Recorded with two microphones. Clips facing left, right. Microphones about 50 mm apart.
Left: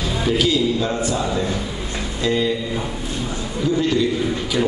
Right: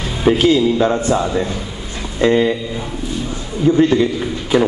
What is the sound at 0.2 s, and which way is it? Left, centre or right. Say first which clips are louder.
A man's voice: right 7 dB; right.